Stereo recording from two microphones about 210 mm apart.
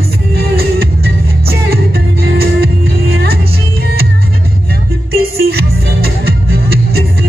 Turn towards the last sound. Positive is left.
turn(degrees=-50)  # may be behind; listen again after turning